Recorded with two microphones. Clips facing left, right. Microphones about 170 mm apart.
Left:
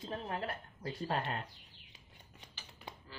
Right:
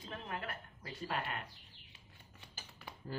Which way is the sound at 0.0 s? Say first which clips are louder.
Left 4 dB; 30° left (ahead or behind).